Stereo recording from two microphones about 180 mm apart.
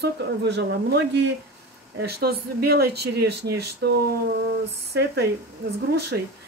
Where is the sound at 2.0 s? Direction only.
60° right (ahead or behind).